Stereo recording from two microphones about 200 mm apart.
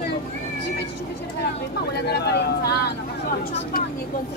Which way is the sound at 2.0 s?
55° left (ahead or behind).